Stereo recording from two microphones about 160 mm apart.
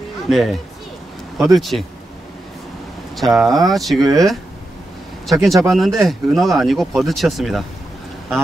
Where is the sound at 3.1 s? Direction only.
Centre (ahead or behind).